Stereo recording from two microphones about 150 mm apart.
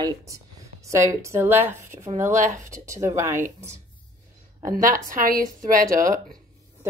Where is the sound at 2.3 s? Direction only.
55° right (ahead or behind).